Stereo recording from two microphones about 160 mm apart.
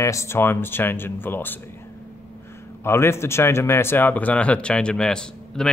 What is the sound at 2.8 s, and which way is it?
Speech, 15° left (ahead or behind).